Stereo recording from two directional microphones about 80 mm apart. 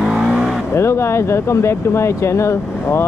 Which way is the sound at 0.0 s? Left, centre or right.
Centre.